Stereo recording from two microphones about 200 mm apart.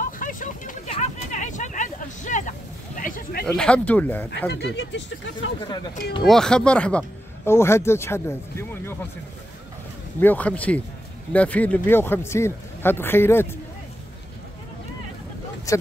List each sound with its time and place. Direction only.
0.2 s vehicle: 40° left (ahead or behind)
0.9 s a sound: 35° left (ahead or behind)
3.0 s speech: 45° left (ahead or behind)
3.5 s a man's voice: 5° left (ahead or behind)
4.5 s speech: 55° left (ahead or behind)
6.2 s a man's voice: centre (ahead or behind)
10.2 s a man's voice: 5° left (ahead or behind)
15.7 s speech: 15° left (ahead or behind)